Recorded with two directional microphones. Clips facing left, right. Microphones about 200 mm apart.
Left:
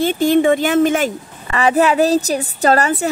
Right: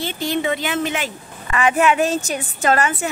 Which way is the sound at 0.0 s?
50° left (ahead or behind).